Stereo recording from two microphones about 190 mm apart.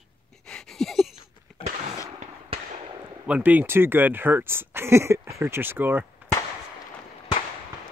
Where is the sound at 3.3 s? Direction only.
10° right (ahead or behind).